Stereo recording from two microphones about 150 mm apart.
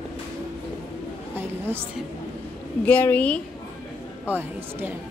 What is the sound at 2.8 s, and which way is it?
Speech, 10° left (ahead or behind).